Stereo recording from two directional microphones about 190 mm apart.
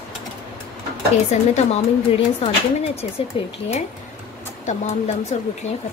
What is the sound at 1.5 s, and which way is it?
Speech, 35° left (ahead or behind).